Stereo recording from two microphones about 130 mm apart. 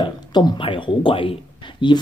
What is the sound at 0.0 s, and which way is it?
Speech, 30° left (ahead or behind).